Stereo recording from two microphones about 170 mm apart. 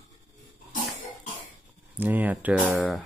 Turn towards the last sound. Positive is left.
turn(degrees=0)  # may be behind; listen again after turning